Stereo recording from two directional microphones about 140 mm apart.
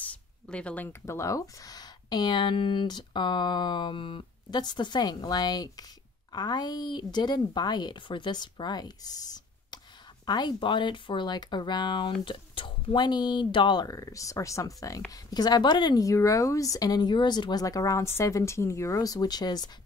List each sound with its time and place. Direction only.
0.5 s a woman's voice: 10° left (ahead or behind); by 19.7 s 30° left (ahead or behind)